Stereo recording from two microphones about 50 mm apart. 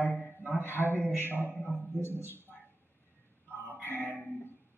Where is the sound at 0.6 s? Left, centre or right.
Right.